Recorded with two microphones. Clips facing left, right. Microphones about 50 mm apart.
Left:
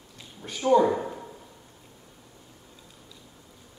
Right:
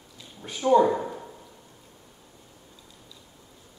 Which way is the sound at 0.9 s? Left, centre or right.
Centre.